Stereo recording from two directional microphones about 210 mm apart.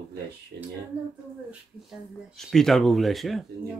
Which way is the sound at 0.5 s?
50° right (ahead or behind).